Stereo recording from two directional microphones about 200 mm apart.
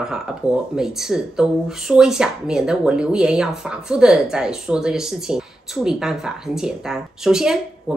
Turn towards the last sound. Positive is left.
turn(degrees=-5)  # may be behind; listen again after turning